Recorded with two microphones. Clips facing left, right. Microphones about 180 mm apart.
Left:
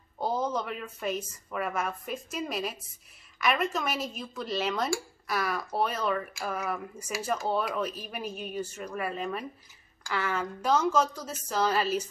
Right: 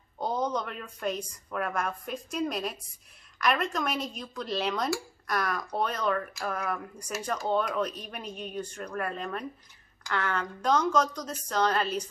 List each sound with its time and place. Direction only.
0.2 s a woman's voice: 5° left (ahead or behind)